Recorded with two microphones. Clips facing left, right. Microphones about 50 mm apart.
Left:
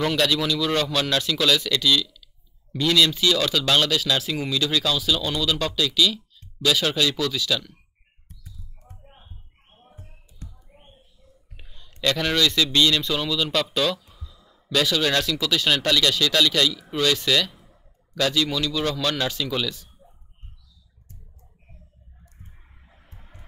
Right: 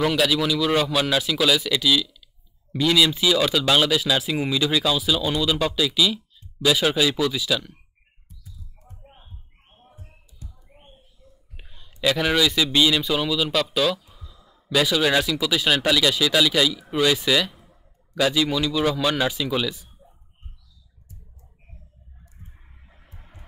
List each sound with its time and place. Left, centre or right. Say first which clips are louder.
0.0 s speech: right 1 dB; centre
10.4 s a sound: left 2 dB; left
11.5 s a man's voice: even; centre
23.1 s chicken: right 1 dB; centre